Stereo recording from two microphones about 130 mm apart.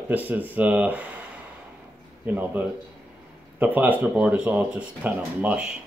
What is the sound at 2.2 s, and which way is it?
Speech, 15° right (ahead or behind).